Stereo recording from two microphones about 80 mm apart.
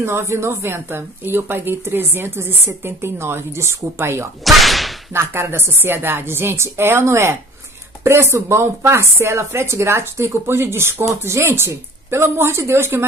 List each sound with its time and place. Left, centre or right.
0.0 s speech: right
4.5 s whip: centre
5.1 s a woman's voice: right